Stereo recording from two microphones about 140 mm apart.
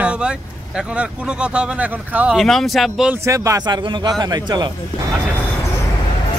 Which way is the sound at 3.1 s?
20° right (ahead or behind).